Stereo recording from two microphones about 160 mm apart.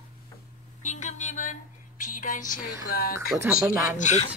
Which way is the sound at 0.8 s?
50° left (ahead or behind).